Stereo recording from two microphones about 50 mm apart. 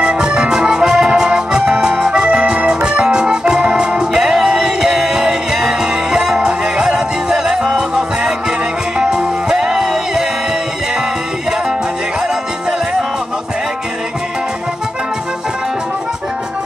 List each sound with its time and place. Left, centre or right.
0.0 s music: right